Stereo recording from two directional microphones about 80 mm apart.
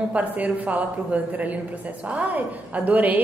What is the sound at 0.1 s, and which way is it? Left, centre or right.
A woman's voice, centre.